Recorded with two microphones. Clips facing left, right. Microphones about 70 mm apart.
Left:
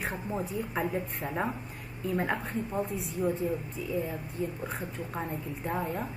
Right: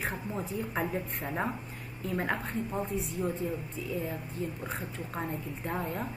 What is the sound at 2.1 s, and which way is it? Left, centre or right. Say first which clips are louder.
A woman's voice: left 1 dB; centre.